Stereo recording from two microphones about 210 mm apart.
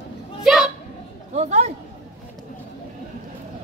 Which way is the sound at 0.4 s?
Centre (ahead or behind).